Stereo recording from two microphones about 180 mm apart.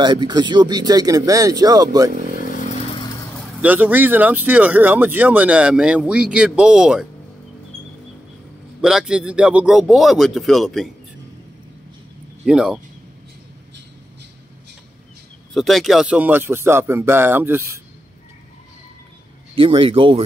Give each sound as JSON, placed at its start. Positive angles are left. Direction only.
{"t": 0.0, "sound": "speech", "side_deg": -25}
{"t": 3.6, "sound": "speech", "side_deg": -10}
{"t": 8.8, "sound": "speech", "side_deg": -5}
{"t": 12.4, "sound": "speech", "side_deg": -5}
{"t": 15.5, "sound": "speech", "side_deg": 0}
{"t": 19.5, "sound": "speech", "side_deg": -30}